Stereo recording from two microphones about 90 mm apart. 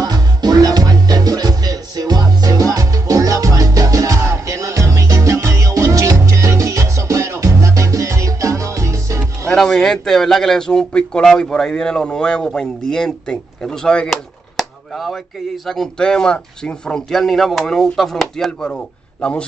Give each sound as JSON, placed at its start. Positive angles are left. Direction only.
{"t": 0.0, "sound": "music", "side_deg": -45}
{"t": 9.5, "sound": "speech", "side_deg": 10}